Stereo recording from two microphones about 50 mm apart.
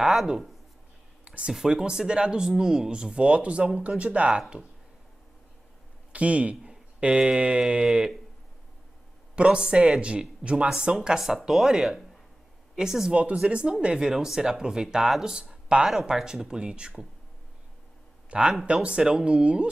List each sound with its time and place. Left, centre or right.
0.0 s speech: centre
1.2 s a sound: right
1.5 s speech: centre
4.4 s speech: centre
6.1 s a man's voice: right
9.3 s speech: right
11.0 s speech: centre
13.1 s speech: right
15.4 s speech: right
16.1 s speech: centre
18.3 s speech: centre